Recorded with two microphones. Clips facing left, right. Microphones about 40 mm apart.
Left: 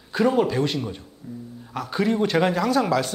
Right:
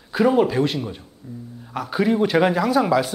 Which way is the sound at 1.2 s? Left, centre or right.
Centre.